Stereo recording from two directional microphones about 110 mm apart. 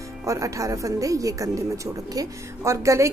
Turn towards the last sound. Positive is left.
turn(degrees=-25)  # may be behind; listen again after turning